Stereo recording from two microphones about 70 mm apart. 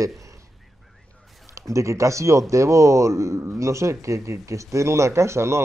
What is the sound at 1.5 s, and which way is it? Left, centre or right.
A man's voice, right.